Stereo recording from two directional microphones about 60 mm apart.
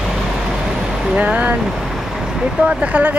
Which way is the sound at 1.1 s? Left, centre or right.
Right.